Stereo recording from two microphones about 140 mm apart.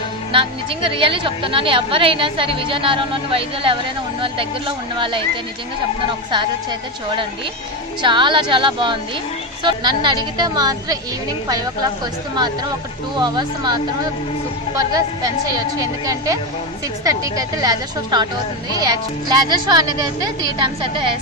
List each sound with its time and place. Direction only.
0.3 s a woman's voice: 40° right (ahead or behind)
8.0 s a woman's voice: 35° right (ahead or behind)
13.1 s a woman's voice: 30° right (ahead or behind)
15.5 s a woman's voice: 25° right (ahead or behind)